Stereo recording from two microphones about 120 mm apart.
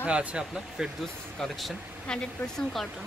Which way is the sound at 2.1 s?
5° left (ahead or behind).